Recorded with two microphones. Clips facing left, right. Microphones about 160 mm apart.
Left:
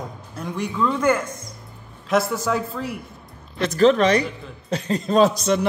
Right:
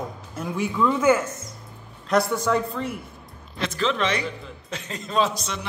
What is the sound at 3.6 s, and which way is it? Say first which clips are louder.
Speech: left 9 dB; 45° left (ahead or behind).